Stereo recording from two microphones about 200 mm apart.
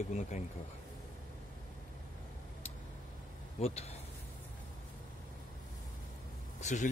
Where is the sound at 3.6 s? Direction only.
30° left (ahead or behind).